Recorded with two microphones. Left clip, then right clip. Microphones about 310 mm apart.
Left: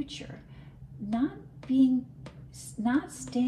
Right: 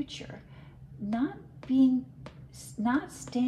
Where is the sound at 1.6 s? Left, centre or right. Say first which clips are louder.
Even; right.